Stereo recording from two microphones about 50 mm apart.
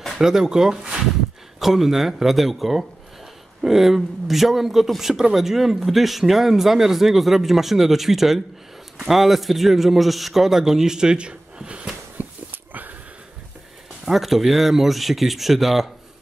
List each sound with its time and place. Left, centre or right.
0.2 s a man's voice: centre
12.2 s a sound: right
14.0 s a man's voice: centre